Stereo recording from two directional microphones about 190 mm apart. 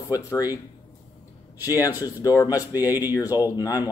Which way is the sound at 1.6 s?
20° left (ahead or behind).